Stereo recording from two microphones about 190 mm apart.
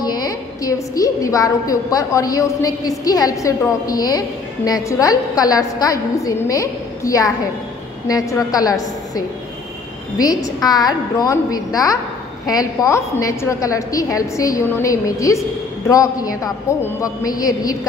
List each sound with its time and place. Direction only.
0.0 s a woman's voice: 20° left (ahead or behind)